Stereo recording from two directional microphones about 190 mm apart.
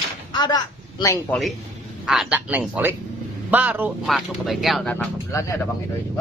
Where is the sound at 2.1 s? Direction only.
5° right (ahead or behind).